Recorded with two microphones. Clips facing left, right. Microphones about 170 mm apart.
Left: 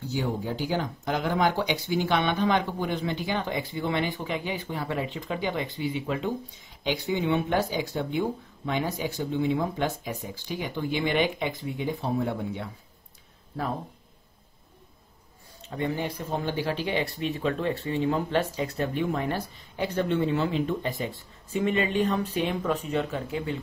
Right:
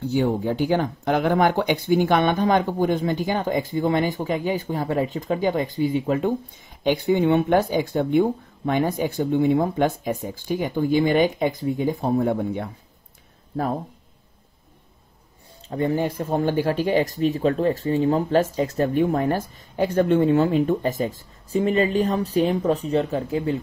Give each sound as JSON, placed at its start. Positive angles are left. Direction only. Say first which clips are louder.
{"t": 0.0, "sound": "speech", "louder": "right 8 dB", "side_deg": -60}
{"t": 15.7, "sound": "speech", "louder": "right 7 dB", "side_deg": -40}